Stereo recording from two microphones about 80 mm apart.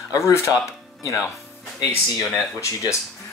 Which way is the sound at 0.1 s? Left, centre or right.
Left.